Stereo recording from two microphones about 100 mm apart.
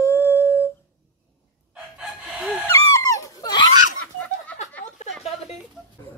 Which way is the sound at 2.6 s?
35° left (ahead or behind).